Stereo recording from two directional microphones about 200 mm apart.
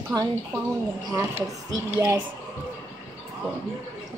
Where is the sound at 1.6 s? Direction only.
15° right (ahead or behind).